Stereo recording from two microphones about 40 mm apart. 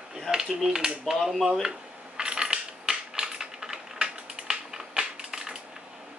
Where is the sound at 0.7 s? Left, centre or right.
Centre.